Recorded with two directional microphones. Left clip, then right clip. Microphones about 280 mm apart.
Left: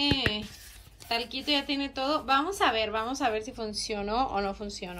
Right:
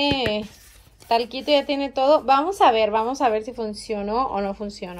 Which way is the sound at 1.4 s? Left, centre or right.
Left.